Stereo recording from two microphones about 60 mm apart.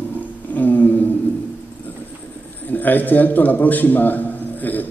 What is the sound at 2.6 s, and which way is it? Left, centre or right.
A man's voice, left.